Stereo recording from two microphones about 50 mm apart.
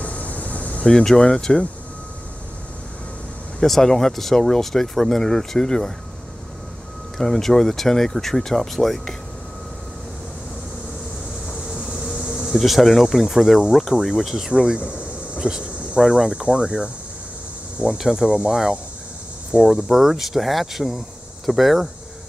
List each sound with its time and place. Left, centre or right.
0.0 s a sound: left
0.8 s speech: centre
3.6 s speech: centre
7.2 s speech: centre
11.7 s bee: centre
12.5 s speech: centre
14.5 s speech: centre
14.9 s a sound: right
16.0 s speech: centre
16.3 s speech: centre
17.8 s speech: centre
19.5 s speech: centre